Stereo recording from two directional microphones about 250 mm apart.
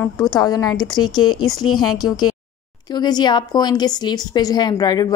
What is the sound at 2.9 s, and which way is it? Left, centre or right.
A woman's voice, centre.